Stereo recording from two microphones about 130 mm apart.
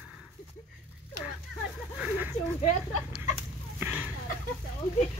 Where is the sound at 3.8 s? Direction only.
15° right (ahead or behind).